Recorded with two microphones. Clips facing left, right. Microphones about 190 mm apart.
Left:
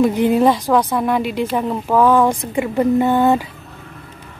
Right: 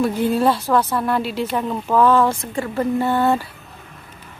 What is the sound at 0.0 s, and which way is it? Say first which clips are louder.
A woman's voice: left 4 dB; 15° left (ahead or behind).